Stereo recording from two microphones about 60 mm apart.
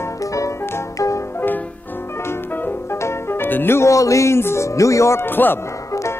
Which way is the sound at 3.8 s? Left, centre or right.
Left.